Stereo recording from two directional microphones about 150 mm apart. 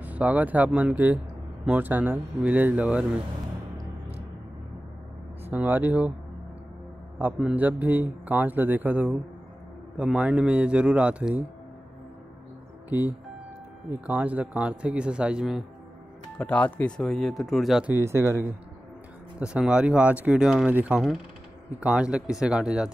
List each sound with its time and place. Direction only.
0.0 s a man's voice: 10° right (ahead or behind)
5.4 s a man's voice: 10° right (ahead or behind)
7.2 s a man's voice: 10° right (ahead or behind)
14.0 s a man's voice: 10° right (ahead or behind)
16.3 s speech: 10° left (ahead or behind)
17.9 s a man's voice: 15° right (ahead or behind)